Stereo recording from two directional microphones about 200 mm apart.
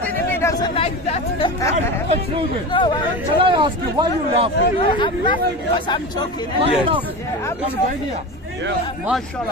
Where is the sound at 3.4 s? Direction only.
25° right (ahead or behind).